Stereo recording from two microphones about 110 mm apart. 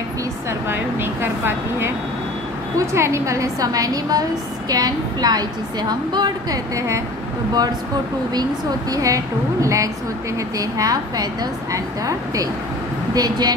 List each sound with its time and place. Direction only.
0.5 s a woman's voice: 20° right (ahead or behind)
2.9 s a woman's voice: 25° right (ahead or behind)
8.9 s a woman's voice: 30° right (ahead or behind)